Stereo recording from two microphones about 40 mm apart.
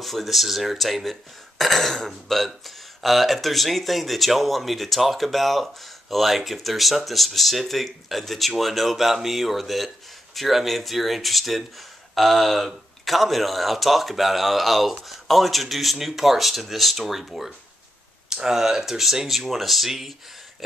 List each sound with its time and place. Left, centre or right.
0.0 s speech: centre
18.3 s speech: centre